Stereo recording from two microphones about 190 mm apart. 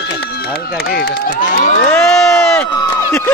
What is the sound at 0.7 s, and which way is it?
Speech, 55° left (ahead or behind).